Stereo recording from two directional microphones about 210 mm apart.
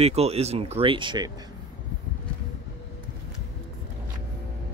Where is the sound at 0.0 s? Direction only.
30° right (ahead or behind).